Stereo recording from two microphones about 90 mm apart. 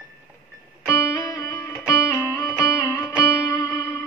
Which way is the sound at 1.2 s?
40° left (ahead or behind).